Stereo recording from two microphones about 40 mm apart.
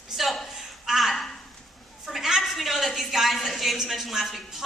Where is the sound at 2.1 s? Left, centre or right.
Centre.